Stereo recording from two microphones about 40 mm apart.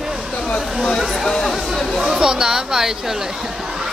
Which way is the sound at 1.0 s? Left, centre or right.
Centre.